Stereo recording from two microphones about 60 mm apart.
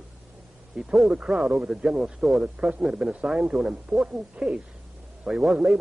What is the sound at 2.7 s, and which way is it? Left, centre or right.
Speech, centre.